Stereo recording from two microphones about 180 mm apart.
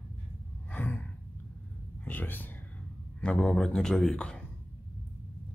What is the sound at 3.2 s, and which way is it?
Speech, 5° left (ahead or behind).